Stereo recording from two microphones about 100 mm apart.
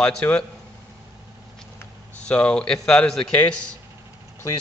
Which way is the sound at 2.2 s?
10° left (ahead or behind).